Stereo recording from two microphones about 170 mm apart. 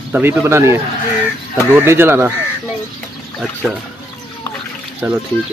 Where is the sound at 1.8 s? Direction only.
15° right (ahead or behind).